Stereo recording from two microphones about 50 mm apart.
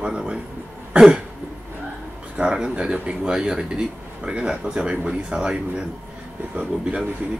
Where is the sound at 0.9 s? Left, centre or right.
Right.